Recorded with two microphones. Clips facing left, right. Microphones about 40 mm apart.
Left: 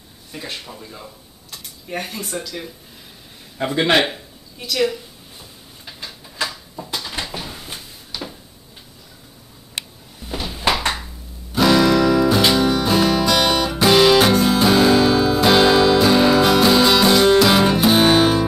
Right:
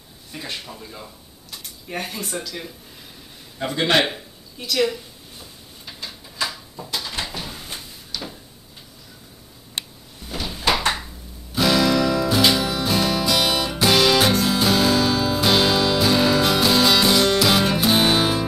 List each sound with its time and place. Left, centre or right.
0.3 s speech: centre
3.5 s a man's voice: centre
4.0 s a sound: centre
8.1 s a sound: centre
10.2 s door: centre
11.5 s music: centre